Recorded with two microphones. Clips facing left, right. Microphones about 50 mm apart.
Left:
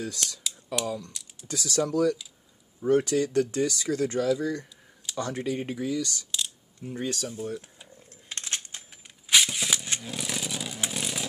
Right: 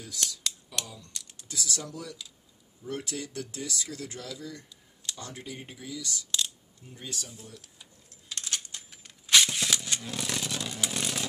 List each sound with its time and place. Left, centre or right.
0.0 s speech: left
1.1 s typing: centre
1.5 s speech: left
2.9 s speech: left
7.5 s cutlery: left
8.9 s a sound: centre
9.4 s a sound: centre
10.9 s vehicle: centre